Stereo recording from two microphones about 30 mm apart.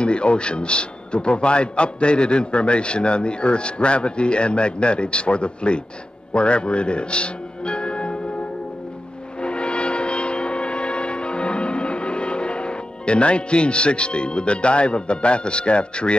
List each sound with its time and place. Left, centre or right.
0.0 s a man's voice: left
9.4 s music: left